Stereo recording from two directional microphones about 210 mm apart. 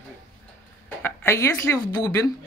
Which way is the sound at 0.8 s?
10° left (ahead or behind).